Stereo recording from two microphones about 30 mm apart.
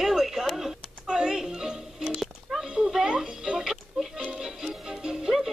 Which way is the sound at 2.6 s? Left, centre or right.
Right.